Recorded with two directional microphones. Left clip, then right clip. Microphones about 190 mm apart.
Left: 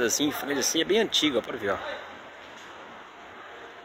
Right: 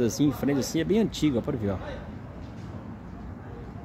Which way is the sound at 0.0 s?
Centre (ahead or behind).